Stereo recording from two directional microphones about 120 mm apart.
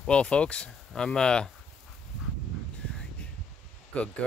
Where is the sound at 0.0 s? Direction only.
10° left (ahead or behind).